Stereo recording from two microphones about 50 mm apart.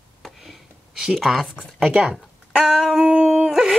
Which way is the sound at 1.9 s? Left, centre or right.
Centre.